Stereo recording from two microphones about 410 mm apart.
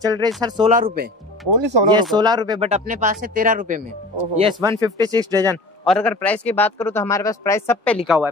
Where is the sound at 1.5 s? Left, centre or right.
Right.